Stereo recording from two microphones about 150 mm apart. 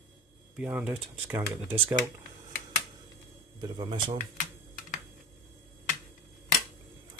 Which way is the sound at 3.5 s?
30° right (ahead or behind).